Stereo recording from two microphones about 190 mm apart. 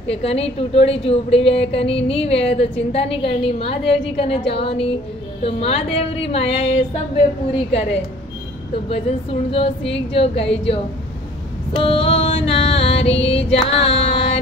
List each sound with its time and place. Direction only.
0.1 s a woman's voice: 30° left (ahead or behind)
9.5 s a woman's voice: 30° left (ahead or behind)
11.7 s music: 30° left (ahead or behind)
13.7 s a woman's voice: 30° left (ahead or behind)